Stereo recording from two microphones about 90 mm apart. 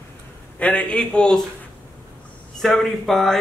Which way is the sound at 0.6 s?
15° left (ahead or behind).